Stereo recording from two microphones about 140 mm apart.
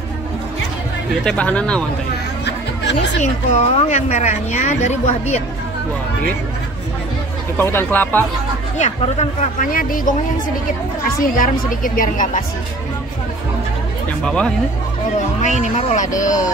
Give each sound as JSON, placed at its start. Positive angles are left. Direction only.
{"t": 1.2, "sound": "speech", "side_deg": 10}
{"t": 3.2, "sound": "a woman's voice", "side_deg": 55}
{"t": 7.5, "sound": "speech", "side_deg": 15}
{"t": 8.7, "sound": "a woman's voice", "side_deg": 55}
{"t": 9.7, "sound": "speech", "side_deg": 85}
{"t": 11.1, "sound": "a woman's voice", "side_deg": 75}
{"t": 14.2, "sound": "speech", "side_deg": 5}
{"t": 15.4, "sound": "a woman's voice", "side_deg": 60}